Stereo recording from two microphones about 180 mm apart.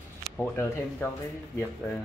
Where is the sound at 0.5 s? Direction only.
10° left (ahead or behind).